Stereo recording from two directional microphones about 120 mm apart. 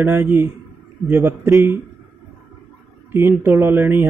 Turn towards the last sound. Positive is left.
turn(degrees=-20)  # may be behind; listen again after turning